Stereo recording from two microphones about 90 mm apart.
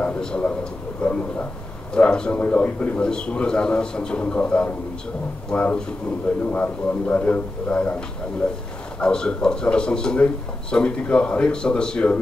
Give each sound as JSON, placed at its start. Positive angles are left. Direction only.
{"t": 0.0, "sound": "a sound", "side_deg": 10}
{"t": 1.0, "sound": "speech", "side_deg": 10}
{"t": 9.0, "sound": "speech", "side_deg": 10}